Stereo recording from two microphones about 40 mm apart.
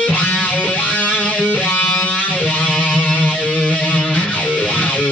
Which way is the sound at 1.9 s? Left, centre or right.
Left.